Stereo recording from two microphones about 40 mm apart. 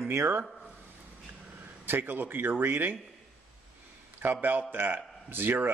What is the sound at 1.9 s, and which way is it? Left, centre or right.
Speech, right.